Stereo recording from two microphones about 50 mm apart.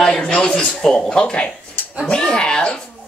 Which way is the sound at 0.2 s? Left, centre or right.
Left.